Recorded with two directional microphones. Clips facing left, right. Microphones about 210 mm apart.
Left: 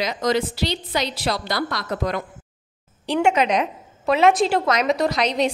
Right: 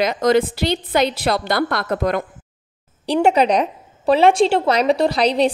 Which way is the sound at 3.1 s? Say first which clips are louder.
Right 4 dB; 35° right (ahead or behind).